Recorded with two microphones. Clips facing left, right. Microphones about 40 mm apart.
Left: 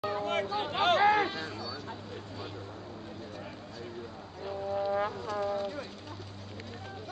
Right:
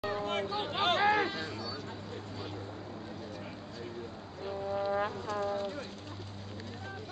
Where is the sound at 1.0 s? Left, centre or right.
Centre.